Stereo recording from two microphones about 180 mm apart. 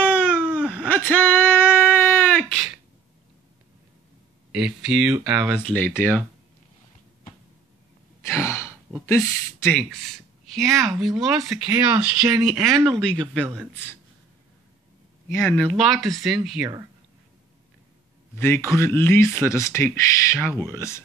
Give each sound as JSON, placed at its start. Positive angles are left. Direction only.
{"t": 0.0, "sound": "baby cry", "side_deg": -5}
{"t": 0.8, "sound": "a sound", "side_deg": 10}
{"t": 4.5, "sound": "speech", "side_deg": -5}
{"t": 8.3, "sound": "sigh", "side_deg": 15}
{"t": 9.0, "sound": "speech", "side_deg": 15}
{"t": 10.0, "sound": "a woman's voice", "side_deg": 0}
{"t": 12.5, "sound": "speech", "side_deg": 0}
{"t": 15.2, "sound": "speech", "side_deg": 15}
{"t": 18.3, "sound": "speech", "side_deg": 15}